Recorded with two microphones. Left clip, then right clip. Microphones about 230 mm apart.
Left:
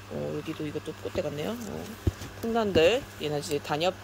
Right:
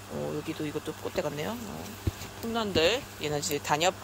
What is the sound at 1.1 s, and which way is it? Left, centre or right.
Speech, centre.